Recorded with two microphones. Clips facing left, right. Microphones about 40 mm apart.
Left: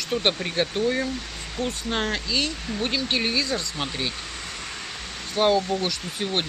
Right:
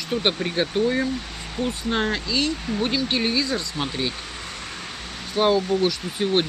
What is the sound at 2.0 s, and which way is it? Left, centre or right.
Speech, centre.